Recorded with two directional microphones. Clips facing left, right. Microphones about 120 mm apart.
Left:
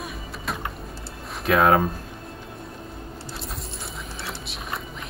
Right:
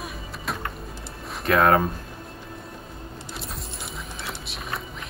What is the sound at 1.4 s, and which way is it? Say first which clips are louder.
Speech: even; centre (ahead or behind).